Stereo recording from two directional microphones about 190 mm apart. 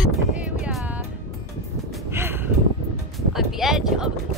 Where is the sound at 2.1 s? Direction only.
10° right (ahead or behind).